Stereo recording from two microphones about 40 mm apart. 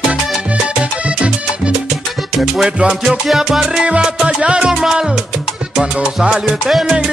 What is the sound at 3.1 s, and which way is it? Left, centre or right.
Music, centre.